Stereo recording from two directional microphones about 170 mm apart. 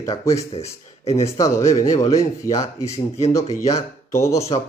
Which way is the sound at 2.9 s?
40° left (ahead or behind).